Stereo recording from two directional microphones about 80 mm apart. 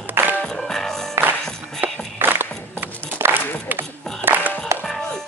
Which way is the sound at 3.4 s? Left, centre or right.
Left.